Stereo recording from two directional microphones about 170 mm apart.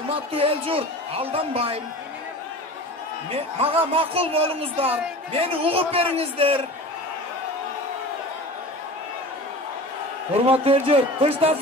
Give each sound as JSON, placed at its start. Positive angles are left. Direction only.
{"t": 0.1, "sound": "a man's voice", "side_deg": -35}
{"t": 3.3, "sound": "a man's voice", "side_deg": -35}
{"t": 10.3, "sound": "a man's voice", "side_deg": -35}